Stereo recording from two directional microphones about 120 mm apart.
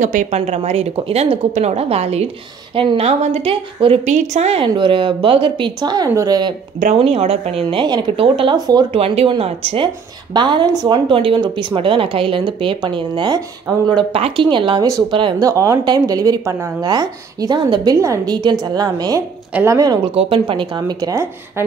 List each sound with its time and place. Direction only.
0.0 s a woman's voice: 90° right; by 2.2 s 60° right (ahead or behind)
2.7 s a woman's voice: 45° right (ahead or behind); by 4.6 s 70° right (ahead or behind)
4.6 s a woman's voice: 40° right (ahead or behind)
7.0 s a woman's voice: 55° right (ahead or behind)
7.8 s a woman's voice: 40° right (ahead or behind)
8.5 s a woman's voice: 30° right (ahead or behind)
8.9 s a woman's voice: 55° right (ahead or behind)
10.3 s a woman's voice: 40° right (ahead or behind)
11.1 s a woman's voice: 45° right (ahead or behind)
15.4 s a woman's voice: 25° right (ahead or behind)
20.2 s a woman's voice: 50° right (ahead or behind); by 21.6 s 25° right (ahead or behind)